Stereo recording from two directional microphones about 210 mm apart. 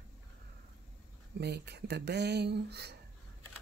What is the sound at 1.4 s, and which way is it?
Speech, 50° right (ahead or behind).